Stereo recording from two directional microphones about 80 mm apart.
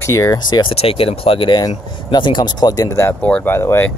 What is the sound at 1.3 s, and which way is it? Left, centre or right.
Speech, left.